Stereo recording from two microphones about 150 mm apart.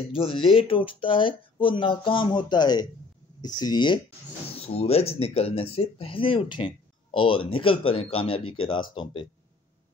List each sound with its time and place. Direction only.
0.1 s speech: 35° left (ahead or behind)
4.6 s speech: 40° left (ahead or behind)